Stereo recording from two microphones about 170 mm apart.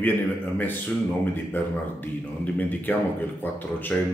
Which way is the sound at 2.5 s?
10° left (ahead or behind).